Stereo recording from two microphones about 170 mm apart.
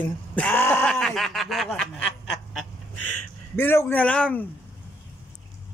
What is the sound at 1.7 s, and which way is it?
Snicker, 5° left (ahead or behind).